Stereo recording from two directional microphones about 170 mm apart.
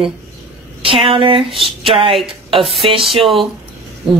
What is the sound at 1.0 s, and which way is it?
Speech, 30° right (ahead or behind).